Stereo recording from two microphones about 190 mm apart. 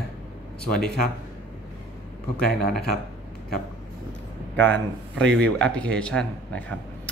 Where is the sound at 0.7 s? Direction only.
5° left (ahead or behind).